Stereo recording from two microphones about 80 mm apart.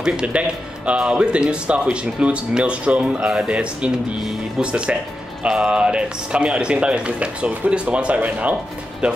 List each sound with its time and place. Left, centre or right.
0.0 s speech: centre
4.2 s speech: centre
4.6 s speech: centre